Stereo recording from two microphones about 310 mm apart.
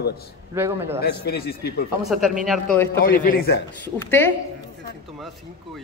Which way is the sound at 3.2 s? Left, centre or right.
Left.